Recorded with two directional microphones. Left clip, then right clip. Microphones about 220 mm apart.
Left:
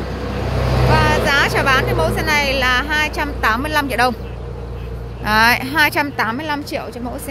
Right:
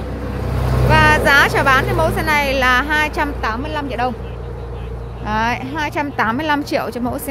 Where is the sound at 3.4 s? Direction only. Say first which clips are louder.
Left 5 dB; centre (ahead or behind).